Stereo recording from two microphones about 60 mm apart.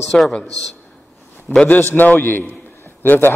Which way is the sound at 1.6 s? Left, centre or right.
Left.